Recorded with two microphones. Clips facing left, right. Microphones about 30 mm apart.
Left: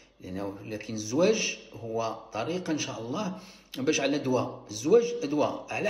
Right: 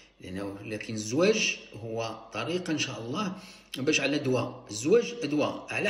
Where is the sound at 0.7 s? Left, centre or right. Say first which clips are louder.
Left 1 dB; right.